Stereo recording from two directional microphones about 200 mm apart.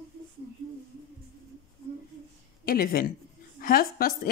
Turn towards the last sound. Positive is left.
turn(degrees=45)  # may be behind; listen again after turning